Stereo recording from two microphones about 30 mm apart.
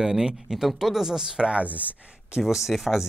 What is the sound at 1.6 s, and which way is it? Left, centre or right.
Speech, right.